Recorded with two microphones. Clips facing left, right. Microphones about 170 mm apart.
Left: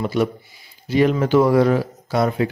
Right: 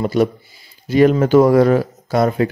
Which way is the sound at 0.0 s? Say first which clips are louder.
Right 4 dB; 40° right (ahead or behind).